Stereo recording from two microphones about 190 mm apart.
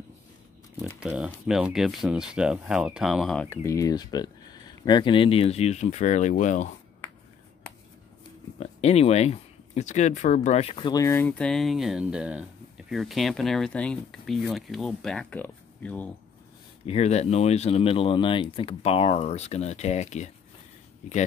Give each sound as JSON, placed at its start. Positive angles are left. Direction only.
{"t": 0.9, "sound": "speech", "side_deg": -5}
{"t": 8.5, "sound": "speech", "side_deg": 35}
{"t": 16.8, "sound": "speech", "side_deg": 35}